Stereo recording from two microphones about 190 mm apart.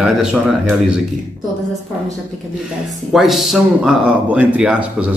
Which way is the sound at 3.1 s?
Centre (ahead or behind).